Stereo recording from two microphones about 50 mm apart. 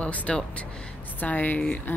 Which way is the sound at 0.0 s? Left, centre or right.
Left.